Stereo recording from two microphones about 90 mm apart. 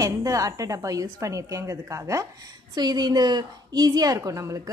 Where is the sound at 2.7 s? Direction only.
50° right (ahead or behind).